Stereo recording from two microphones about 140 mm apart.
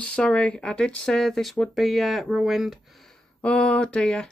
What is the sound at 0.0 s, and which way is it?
Speech, 10° left (ahead or behind).